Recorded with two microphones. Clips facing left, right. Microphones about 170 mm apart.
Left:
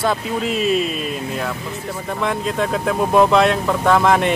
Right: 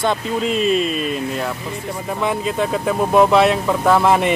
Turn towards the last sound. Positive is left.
turn(degrees=-5)  # may be behind; listen again after turning